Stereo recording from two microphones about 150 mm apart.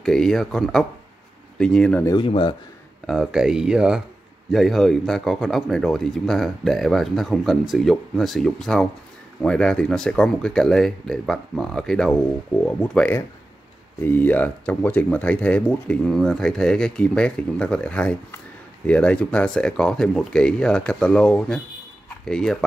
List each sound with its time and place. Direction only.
0.0 s speech: centre (ahead or behind)
2.0 s speech: 35° left (ahead or behind)
3.1 s speech: 5° right (ahead or behind)